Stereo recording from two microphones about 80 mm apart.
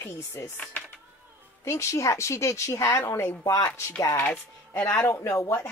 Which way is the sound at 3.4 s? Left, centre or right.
Left.